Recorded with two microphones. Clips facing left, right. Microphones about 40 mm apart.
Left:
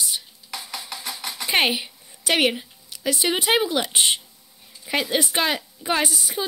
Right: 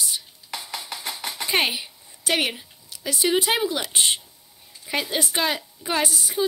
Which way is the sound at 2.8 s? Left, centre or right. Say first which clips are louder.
Even; left.